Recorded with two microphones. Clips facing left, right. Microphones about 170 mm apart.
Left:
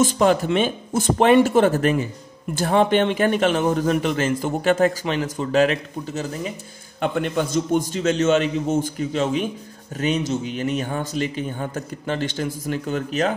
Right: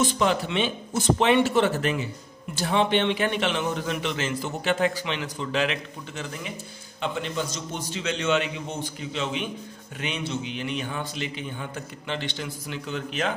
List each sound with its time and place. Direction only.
0.0 s a man's voice: 45° left (ahead or behind)
7.0 s a man's voice: 55° left (ahead or behind)